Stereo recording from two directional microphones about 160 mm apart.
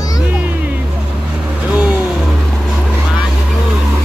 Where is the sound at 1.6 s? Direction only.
5° right (ahead or behind).